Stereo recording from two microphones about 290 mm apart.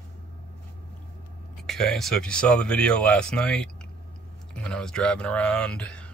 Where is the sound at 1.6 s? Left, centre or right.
Centre.